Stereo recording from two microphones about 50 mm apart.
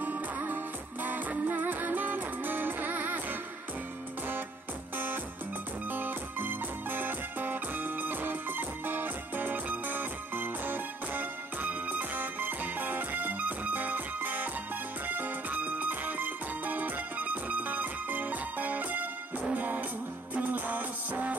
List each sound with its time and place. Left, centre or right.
0.0 s music: right
4.9 s music: right